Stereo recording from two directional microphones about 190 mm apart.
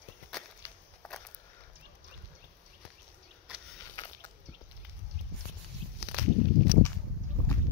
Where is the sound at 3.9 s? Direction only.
20° left (ahead or behind).